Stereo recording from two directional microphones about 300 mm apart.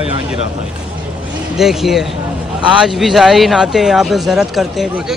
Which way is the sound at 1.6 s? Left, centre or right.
Centre.